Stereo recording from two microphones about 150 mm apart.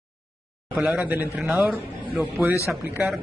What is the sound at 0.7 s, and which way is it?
Speech, 10° right (ahead or behind).